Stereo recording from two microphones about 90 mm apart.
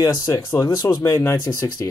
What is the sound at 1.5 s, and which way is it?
Speech, 15° left (ahead or behind).